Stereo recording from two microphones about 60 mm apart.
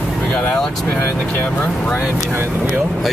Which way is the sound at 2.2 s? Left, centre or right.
Right.